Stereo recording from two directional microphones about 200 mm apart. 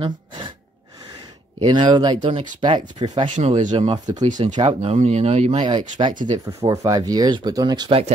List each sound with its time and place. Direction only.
1.6 s speech: 25° right (ahead or behind)
3.3 s speech: 35° right (ahead or behind); by 4.3 s 20° right (ahead or behind)
4.6 s speech: 30° right (ahead or behind)